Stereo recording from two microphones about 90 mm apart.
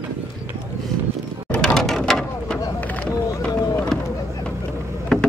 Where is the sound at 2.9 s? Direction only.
15° left (ahead or behind).